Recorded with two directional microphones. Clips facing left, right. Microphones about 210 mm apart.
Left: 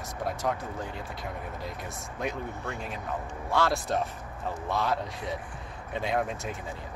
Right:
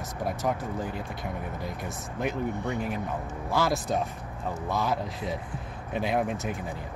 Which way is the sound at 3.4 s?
Centre (ahead or behind).